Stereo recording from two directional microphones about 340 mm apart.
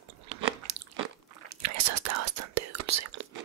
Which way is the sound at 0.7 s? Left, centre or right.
Right.